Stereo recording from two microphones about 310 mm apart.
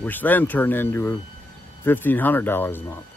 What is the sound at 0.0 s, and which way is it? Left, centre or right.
Speech, centre.